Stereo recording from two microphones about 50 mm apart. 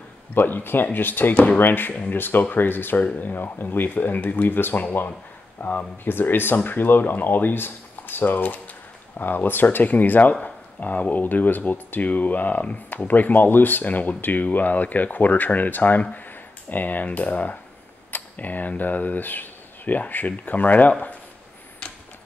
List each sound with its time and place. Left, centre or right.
0.3 s speech: left